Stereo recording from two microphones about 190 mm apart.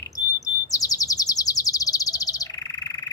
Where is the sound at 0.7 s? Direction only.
20° left (ahead or behind).